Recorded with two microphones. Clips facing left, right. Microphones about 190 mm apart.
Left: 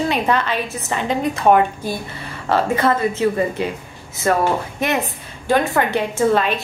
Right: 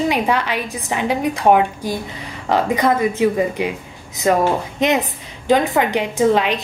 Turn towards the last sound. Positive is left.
turn(degrees=-15)  # may be behind; listen again after turning